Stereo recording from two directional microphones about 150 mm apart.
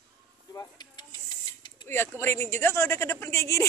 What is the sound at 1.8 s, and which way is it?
A woman's voice, 15° left (ahead or behind).